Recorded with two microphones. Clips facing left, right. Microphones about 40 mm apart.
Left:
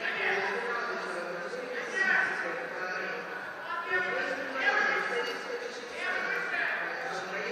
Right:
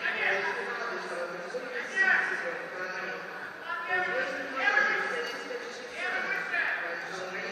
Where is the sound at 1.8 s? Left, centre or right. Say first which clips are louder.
Right 2 dB; centre.